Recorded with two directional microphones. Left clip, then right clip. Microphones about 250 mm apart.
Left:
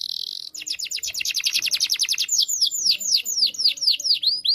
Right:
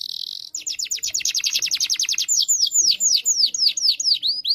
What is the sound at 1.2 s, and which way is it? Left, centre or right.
Bird, centre.